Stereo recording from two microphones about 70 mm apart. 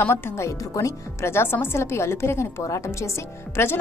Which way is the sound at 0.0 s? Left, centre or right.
Left.